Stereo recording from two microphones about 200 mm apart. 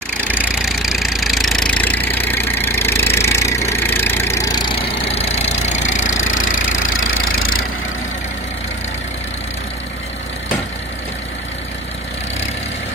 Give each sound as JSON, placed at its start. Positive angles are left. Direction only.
{"t": 0.4, "sound": "engine", "side_deg": 0}
{"t": 3.7, "sound": "vehicle", "side_deg": 10}
{"t": 6.1, "sound": "vehicle", "side_deg": 75}